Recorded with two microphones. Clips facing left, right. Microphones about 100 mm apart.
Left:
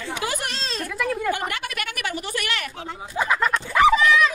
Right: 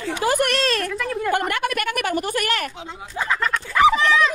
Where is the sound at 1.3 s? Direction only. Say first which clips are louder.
Right 5 dB; 50° right (ahead or behind).